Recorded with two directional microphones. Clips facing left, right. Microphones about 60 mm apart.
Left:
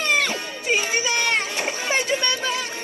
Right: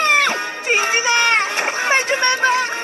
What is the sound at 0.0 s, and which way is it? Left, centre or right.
Music, right.